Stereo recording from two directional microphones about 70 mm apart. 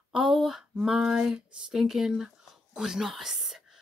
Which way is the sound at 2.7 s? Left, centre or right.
Centre.